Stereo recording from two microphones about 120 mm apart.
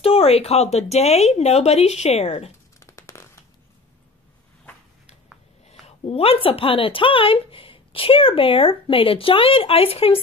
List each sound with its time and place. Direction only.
0.0 s speech: 55° left (ahead or behind)
2.8 s a sound: 25° left (ahead or behind)
5.9 s a woman's voice: 55° left (ahead or behind)